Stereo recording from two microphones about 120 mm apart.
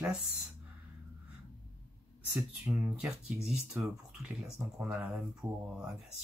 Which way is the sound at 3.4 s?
5° right (ahead or behind).